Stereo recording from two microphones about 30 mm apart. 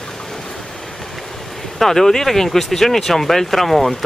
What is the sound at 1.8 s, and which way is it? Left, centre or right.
Speech, centre.